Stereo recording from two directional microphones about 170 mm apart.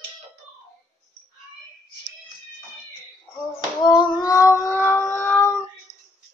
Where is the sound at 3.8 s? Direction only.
25° left (ahead or behind).